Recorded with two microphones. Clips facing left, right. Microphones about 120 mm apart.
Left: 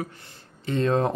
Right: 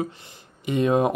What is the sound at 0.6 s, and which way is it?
Speech, 15° right (ahead or behind).